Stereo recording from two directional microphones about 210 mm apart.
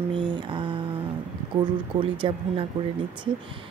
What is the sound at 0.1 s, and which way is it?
Mantra, 25° right (ahead or behind).